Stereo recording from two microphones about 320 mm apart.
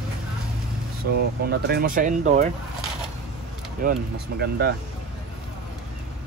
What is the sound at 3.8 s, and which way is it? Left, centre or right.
Speech, right.